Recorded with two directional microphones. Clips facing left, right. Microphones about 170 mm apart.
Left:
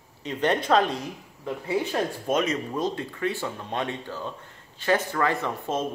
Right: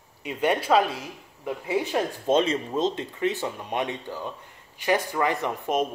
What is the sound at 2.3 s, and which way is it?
Speech, 30° right (ahead or behind).